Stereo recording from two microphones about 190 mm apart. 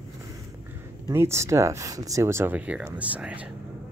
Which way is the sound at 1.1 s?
15° right (ahead or behind).